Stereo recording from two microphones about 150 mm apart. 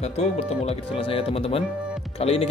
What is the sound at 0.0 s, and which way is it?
Speech, 45° left (ahead or behind).